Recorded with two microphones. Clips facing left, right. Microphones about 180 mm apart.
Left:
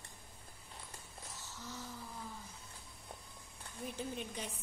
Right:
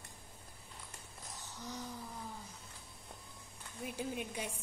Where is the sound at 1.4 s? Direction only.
15° right (ahead or behind).